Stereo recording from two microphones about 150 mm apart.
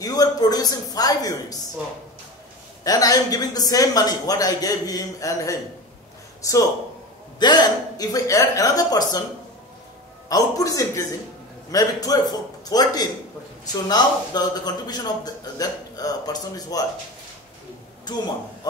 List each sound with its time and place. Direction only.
0.0 s a man's voice: 25° left (ahead or behind)
2.8 s a man's voice: 25° left (ahead or behind)
10.2 s a man's voice: 25° left (ahead or behind)
18.0 s a man's voice: 30° left (ahead or behind)